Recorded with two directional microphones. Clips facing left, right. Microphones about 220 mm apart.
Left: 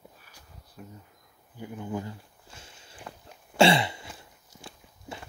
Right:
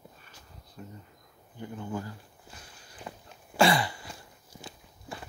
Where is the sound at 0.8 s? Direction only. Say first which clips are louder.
Right 1 dB; 5° left (ahead or behind).